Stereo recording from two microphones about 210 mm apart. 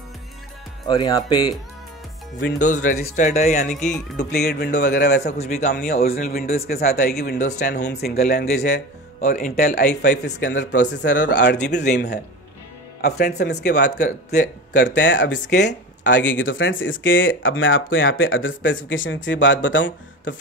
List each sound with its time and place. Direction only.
0.8 s speech: 20° left (ahead or behind)
2.6 s speech: 40° left (ahead or behind)
3.6 s speech: 5° left (ahead or behind)
4.2 s a man's voice: 50° left (ahead or behind)
5.4 s speech: 35° left (ahead or behind)
6.0 s a man's voice: 45° left (ahead or behind)
7.3 s speech: 35° left (ahead or behind)
7.6 s a man's voice: 50° left (ahead or behind)
9.2 s a man's voice: 35° left (ahead or behind); by 13.9 s 55° left (ahead or behind)
13.9 s speech: 35° left (ahead or behind)
15.0 s speech: 60° left (ahead or behind)